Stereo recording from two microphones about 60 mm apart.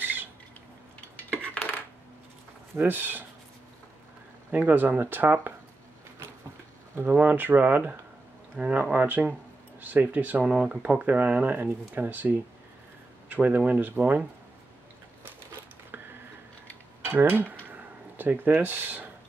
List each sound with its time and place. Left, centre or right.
0.0 s a sound: right
1.3 s coin: left
2.7 s speech: right
4.5 s speech: right
7.0 s speech: right
8.5 s speech: right
10.4 s speech: centre
10.9 s speech: right
17.0 s mechanisms: right